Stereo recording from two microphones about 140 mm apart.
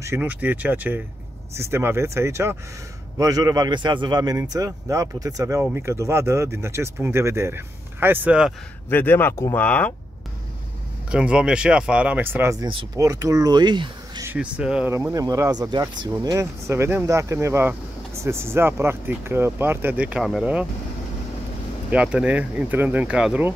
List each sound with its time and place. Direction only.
0.0 s speech: 15° right (ahead or behind)
8.8 s speech: 15° left (ahead or behind)
11.1 s speech: 5° right (ahead or behind)
12.5 s speech: 30° right (ahead or behind)
14.2 s speech: 10° right (ahead or behind)
14.9 s speech: 20° right (ahead or behind)
21.9 s speech: 10° right (ahead or behind)